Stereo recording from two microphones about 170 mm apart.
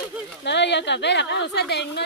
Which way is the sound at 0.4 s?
90° left.